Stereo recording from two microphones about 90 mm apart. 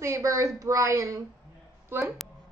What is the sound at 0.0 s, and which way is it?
Speech, 35° right (ahead or behind).